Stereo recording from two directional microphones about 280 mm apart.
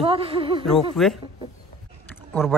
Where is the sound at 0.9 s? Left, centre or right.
Centre.